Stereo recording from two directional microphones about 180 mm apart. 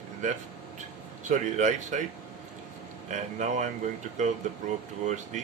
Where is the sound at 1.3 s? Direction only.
40° right (ahead or behind).